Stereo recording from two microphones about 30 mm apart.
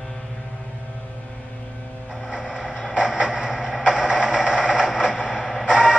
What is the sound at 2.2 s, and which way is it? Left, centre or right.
Mechanisms, right.